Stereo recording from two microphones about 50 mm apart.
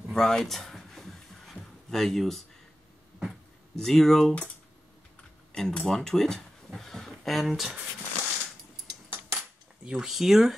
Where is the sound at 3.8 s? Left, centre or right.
Centre.